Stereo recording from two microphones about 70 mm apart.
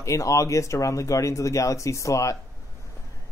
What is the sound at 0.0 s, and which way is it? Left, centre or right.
Speech, left.